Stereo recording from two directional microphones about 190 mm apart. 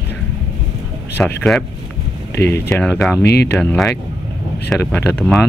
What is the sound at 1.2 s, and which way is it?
Speech, 5° left (ahead or behind).